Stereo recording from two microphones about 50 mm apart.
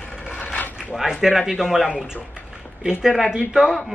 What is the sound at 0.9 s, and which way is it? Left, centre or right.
Speech, centre.